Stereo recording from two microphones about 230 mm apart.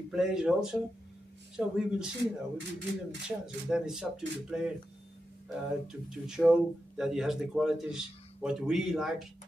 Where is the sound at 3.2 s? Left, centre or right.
Centre.